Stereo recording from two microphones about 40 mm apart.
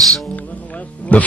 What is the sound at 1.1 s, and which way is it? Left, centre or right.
Speech, left.